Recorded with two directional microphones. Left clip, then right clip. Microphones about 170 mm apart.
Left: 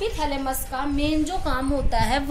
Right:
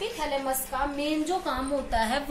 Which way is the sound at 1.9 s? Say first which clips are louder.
Left 3 dB; 40° left (ahead or behind).